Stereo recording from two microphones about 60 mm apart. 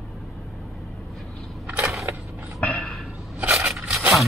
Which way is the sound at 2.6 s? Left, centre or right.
Centre.